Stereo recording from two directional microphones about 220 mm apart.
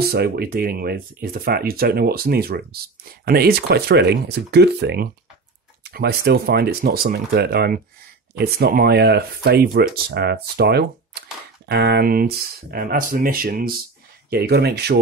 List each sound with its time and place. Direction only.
0.0 s speech: 45° right (ahead or behind)